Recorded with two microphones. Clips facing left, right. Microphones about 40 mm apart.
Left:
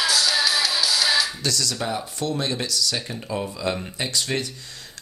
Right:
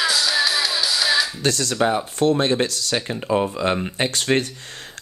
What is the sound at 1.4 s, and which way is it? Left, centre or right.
Speech, right.